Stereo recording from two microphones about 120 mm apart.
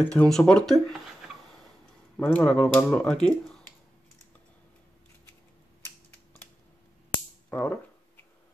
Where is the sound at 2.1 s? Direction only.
10° left (ahead or behind).